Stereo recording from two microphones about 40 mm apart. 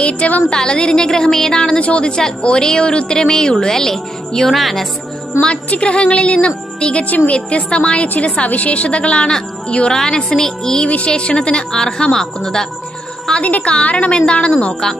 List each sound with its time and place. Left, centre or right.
0.0 s a woman's voice: left
0.5 s a woman's voice: left
1.8 s a woman's voice: left
2.0 s a woman's voice: centre
5.7 s a woman's voice: left
8.1 s a woman's voice: left; by 10.9 s centre
11.1 s a woman's voice: left
13.4 s a woman's voice: left
14.7 s a woman's voice: centre